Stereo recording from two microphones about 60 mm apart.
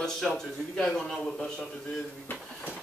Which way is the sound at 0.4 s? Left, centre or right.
Centre.